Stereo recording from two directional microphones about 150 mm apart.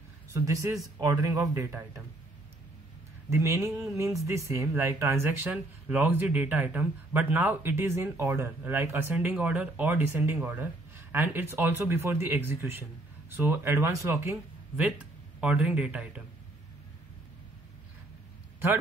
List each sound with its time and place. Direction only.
0.3 s speech: 20° right (ahead or behind)
3.3 s speech: 15° right (ahead or behind)